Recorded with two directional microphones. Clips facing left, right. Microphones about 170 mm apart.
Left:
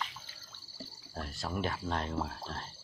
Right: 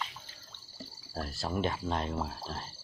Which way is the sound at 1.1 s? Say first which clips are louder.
Right 3 dB; 35° right (ahead or behind).